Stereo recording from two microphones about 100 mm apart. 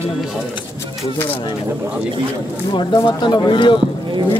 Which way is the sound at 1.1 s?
20° left (ahead or behind).